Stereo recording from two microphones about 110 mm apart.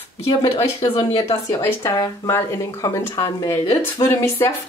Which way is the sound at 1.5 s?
25° left (ahead or behind).